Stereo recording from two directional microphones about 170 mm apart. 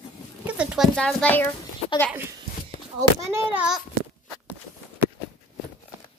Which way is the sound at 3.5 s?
5° right (ahead or behind).